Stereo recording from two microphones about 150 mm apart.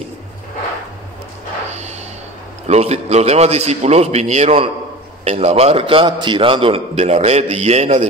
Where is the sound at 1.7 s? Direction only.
45° right (ahead or behind).